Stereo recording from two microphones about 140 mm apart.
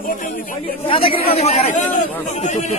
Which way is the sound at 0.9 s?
45° left (ahead or behind).